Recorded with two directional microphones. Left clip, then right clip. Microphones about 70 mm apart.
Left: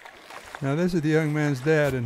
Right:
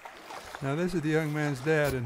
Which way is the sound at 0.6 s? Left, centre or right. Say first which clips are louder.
Left 5 dB; centre.